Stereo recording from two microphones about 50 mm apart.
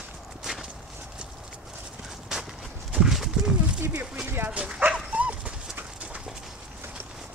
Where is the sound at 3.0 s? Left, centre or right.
Centre.